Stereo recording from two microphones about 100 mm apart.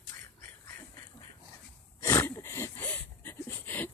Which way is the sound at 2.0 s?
30° left (ahead or behind).